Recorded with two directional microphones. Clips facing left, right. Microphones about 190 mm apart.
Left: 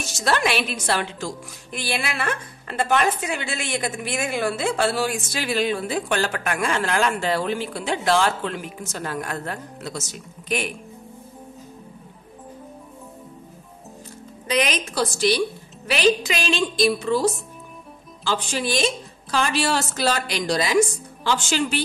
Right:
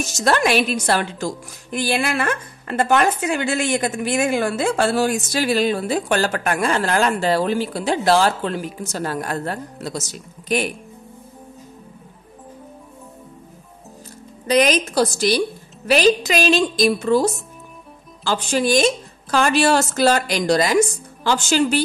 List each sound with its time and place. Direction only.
0.0 s a woman's voice: 45° right (ahead or behind)
14.5 s a woman's voice: 40° right (ahead or behind)